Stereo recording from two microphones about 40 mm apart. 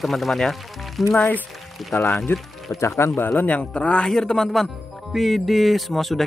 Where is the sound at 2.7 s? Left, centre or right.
Left.